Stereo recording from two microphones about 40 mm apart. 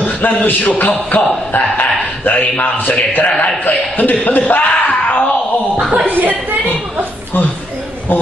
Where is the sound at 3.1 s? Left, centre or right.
Left.